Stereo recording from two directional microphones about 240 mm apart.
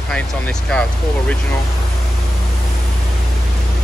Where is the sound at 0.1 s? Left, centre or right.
Centre.